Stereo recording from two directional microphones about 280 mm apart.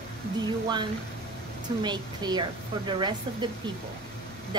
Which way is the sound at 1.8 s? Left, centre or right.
Centre.